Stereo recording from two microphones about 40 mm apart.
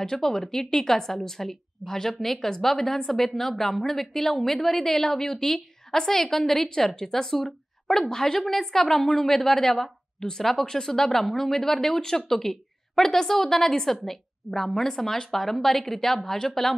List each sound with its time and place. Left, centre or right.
0.2 s a woman's voice: centre